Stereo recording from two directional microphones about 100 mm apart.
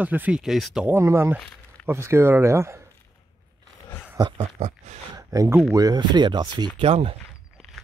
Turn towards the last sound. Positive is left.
turn(degrees=-75)  # may be behind; listen again after turning